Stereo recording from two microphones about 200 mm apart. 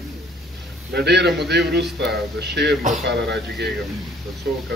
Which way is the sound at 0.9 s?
55° right (ahead or behind).